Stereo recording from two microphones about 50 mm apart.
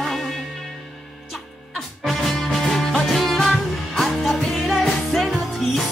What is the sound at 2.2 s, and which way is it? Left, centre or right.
Music, centre.